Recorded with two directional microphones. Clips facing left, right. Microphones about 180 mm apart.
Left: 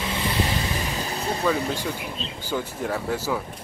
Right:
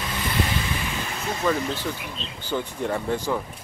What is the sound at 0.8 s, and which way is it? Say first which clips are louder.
Vehicle: left 2 dB; 35° left (ahead or behind).